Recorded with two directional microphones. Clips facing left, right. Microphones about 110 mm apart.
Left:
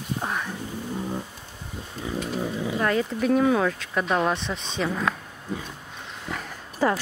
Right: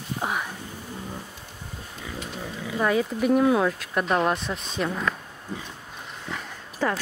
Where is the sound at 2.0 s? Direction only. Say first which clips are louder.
Left 7 dB; 25° left (ahead or behind).